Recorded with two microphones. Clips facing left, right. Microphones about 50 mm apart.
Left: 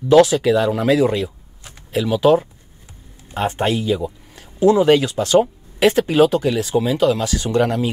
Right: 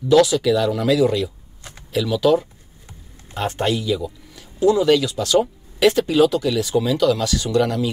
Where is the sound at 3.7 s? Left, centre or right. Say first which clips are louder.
Left 2 dB; left.